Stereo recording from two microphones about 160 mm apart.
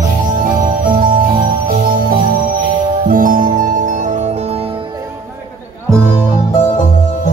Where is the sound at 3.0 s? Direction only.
60° right (ahead or behind).